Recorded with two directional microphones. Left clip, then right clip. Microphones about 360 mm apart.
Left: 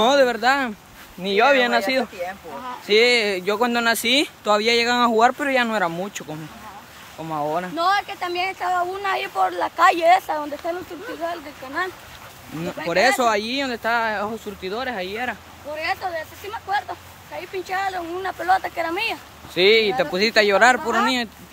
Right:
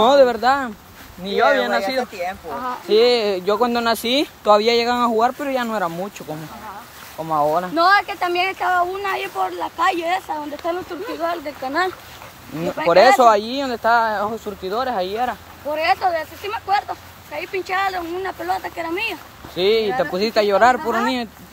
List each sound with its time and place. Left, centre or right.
0.0 s speech: centre
2.2 s speech: right
2.9 s speech: centre
7.2 s speech: centre
11.2 s speech: centre